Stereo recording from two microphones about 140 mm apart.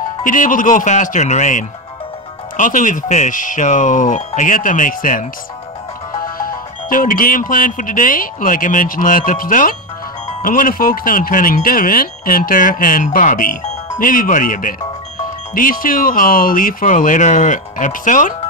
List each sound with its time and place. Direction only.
0.2 s speech: 70° left (ahead or behind)
6.3 s speech: 85° left